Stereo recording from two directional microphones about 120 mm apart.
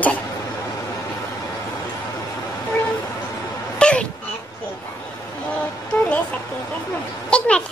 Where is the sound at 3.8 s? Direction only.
10° left (ahead or behind).